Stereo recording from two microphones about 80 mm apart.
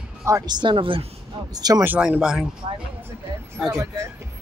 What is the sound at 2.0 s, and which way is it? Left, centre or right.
Speech, centre.